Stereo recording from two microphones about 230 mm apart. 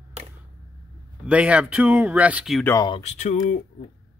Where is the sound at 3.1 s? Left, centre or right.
Left.